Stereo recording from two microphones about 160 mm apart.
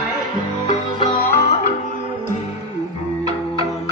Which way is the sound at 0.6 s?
45° left (ahead or behind).